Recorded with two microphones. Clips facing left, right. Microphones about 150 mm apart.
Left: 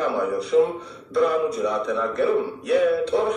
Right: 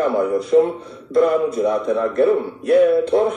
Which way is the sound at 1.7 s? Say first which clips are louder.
Right 5 dB; 55° right (ahead or behind).